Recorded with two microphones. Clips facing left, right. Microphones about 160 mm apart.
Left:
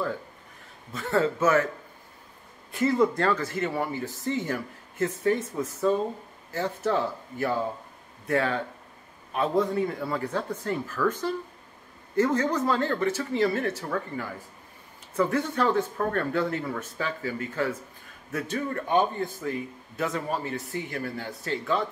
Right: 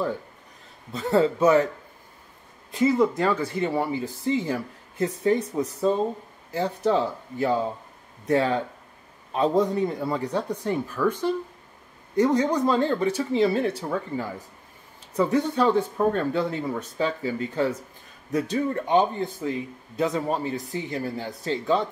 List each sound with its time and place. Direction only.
0.9 s speech: 20° right (ahead or behind)
2.9 s speech: 5° right (ahead or behind)
6.5 s speech: 15° right (ahead or behind)